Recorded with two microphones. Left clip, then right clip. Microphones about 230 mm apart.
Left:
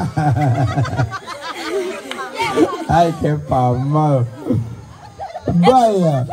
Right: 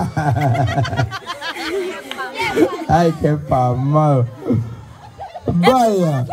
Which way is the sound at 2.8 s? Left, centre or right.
Right.